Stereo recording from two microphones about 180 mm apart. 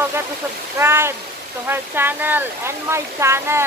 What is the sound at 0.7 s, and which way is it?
Speech, 15° right (ahead or behind).